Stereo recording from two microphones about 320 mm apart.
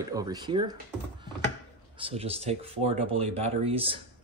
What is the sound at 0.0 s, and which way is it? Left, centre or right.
Speech, centre.